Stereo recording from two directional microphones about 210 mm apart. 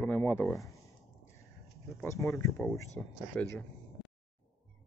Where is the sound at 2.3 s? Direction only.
10° left (ahead or behind).